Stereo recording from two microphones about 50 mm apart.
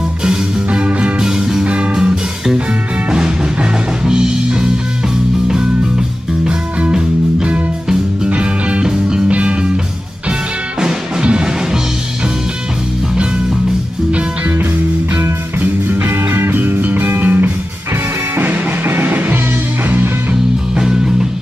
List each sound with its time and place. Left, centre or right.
0.7 s music: right
4.0 s music: centre
6.9 s music: centre
10.8 s music: centre
15.6 s music: right
20.7 s music: centre